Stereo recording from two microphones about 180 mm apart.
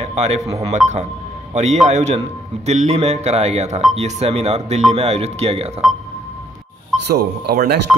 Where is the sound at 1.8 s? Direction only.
40° right (ahead or behind).